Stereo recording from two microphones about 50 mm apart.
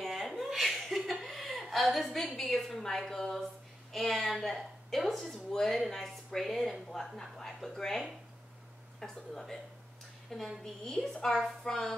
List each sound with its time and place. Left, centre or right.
0.0 s laughter: centre
3.9 s a woman's voice: centre
9.0 s a woman's voice: centre
10.6 s a woman's voice: centre